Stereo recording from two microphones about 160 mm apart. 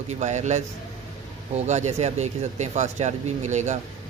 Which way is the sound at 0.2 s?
45° right (ahead or behind).